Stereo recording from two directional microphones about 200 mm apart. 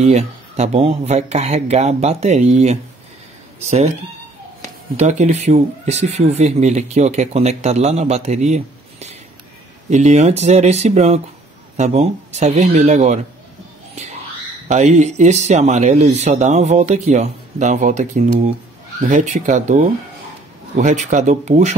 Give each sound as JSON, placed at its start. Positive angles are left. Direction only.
{"t": 0.0, "sound": "speech", "side_deg": -35}
{"t": 4.9, "sound": "speech", "side_deg": -35}
{"t": 14.7, "sound": "speech", "side_deg": -35}